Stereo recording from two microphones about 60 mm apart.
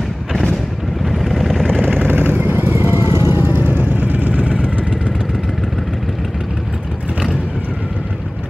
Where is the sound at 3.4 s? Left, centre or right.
Right.